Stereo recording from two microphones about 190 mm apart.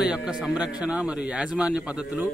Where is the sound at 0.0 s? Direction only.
5° right (ahead or behind).